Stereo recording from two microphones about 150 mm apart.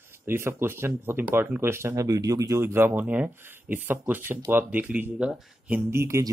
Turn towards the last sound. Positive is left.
turn(degrees=-20)  # may be behind; listen again after turning